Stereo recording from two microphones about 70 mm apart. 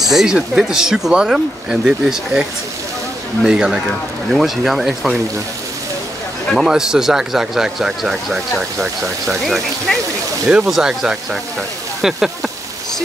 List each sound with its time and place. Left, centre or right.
0.0 s speech: centre
3.4 s speech: centre
3.8 s a man's voice: centre
6.5 s a man's voice: centre